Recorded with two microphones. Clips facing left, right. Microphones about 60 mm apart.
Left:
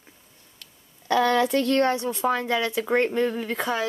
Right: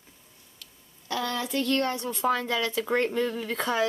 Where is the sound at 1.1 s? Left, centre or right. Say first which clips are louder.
Left 9 dB; left.